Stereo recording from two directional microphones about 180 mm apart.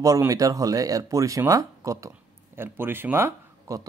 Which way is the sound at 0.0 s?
20° right (ahead or behind).